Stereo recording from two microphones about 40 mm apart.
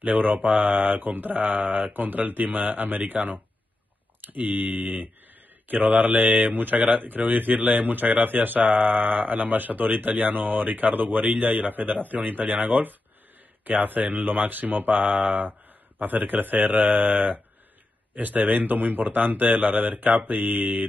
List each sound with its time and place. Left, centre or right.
0.0 s mantra: right